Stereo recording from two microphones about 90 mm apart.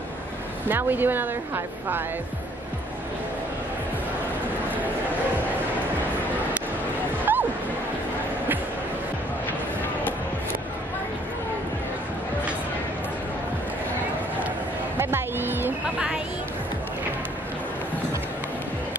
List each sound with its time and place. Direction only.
0.7 s a woman's voice: 20° right (ahead or behind)
7.3 s a sound: 20° right (ahead or behind)
15.0 s music: 25° right (ahead or behind)